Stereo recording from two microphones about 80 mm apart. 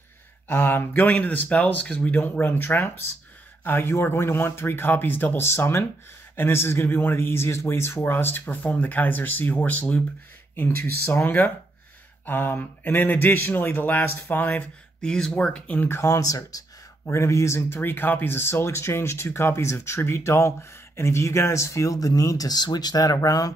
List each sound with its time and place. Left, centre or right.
0.5 s speech: left
15.9 s speech: left